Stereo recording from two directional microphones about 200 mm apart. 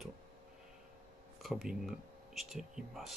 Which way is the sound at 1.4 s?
Centre (ahead or behind).